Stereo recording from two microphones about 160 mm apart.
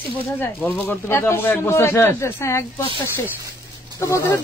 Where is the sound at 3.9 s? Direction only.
20° left (ahead or behind).